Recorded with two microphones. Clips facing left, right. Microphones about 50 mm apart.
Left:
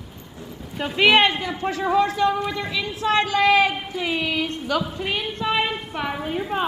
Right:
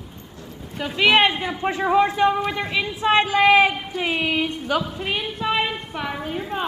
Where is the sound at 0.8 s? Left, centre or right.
Centre.